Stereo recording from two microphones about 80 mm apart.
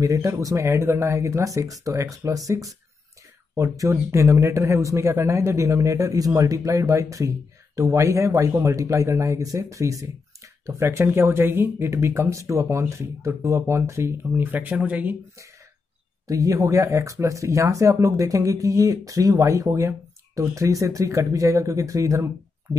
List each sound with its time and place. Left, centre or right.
0.0 s speech: right
14.3 s speech: right
16.3 s speech: right